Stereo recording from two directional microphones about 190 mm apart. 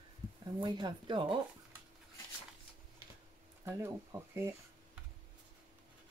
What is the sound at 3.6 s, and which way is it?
Speech, 10° right (ahead or behind).